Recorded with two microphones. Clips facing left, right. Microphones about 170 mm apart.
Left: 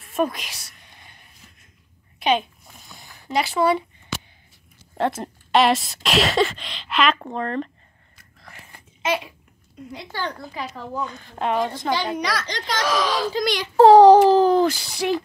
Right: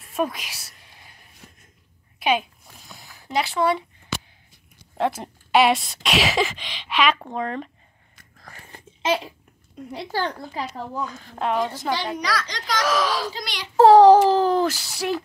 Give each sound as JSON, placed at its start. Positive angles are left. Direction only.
{"t": 0.1, "sound": "a woman's voice", "side_deg": -5}
{"t": 0.8, "sound": "a sound", "side_deg": -5}
{"t": 3.0, "sound": "speech", "side_deg": -5}
{"t": 4.9, "sound": "speech", "side_deg": 0}
{"t": 8.7, "sound": "babbling", "side_deg": -30}
{"t": 11.1, "sound": "speech", "side_deg": 0}
{"t": 12.4, "sound": "a child's voice", "side_deg": 25}
{"t": 12.8, "sound": "speech", "side_deg": -5}
{"t": 13.3, "sound": "a child's voice", "side_deg": 50}
{"t": 13.7, "sound": "speech", "side_deg": 0}